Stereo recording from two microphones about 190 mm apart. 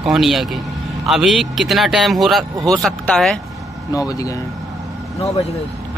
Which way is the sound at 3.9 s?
20° left (ahead or behind).